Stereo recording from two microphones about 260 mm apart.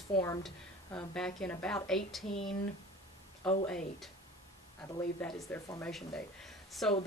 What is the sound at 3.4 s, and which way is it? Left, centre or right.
Speech, left.